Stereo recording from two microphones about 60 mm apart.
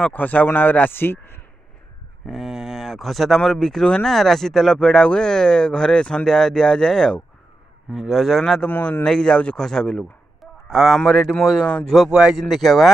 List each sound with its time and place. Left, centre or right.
0.1 s a man's voice: left
2.2 s speech: centre
7.9 s speech: centre
8.6 s a man's voice: left
9.0 s speech: centre
10.4 s a sound: centre
11.0 s speech: centre
12.1 s speech: centre
12.4 s speech: centre